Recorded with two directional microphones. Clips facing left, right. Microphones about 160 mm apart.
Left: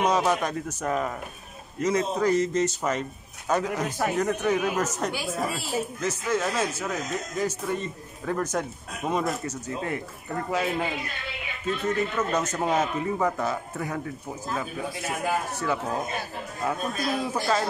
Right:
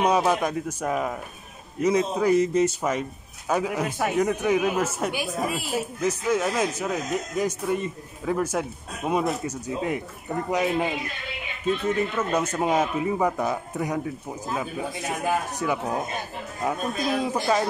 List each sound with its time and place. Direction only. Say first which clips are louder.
0.0 s a man's voice: right 2 dB; 10° right (ahead or behind)